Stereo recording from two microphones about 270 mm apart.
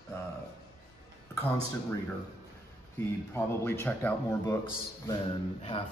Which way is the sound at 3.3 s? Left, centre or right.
Centre.